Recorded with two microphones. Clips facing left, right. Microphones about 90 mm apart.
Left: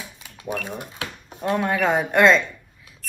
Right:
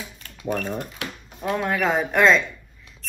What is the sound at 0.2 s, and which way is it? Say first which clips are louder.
Typing: right 3 dB; 15° left (ahead or behind).